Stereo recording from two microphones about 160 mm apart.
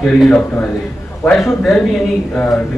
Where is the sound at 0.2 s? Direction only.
5° left (ahead or behind).